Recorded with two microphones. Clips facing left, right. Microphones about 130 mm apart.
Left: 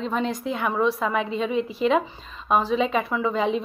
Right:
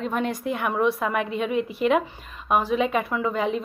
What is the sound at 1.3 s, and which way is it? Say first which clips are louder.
Speech: even; 55° right (ahead or behind).